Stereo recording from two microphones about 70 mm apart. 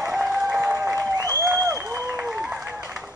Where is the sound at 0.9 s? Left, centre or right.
Right.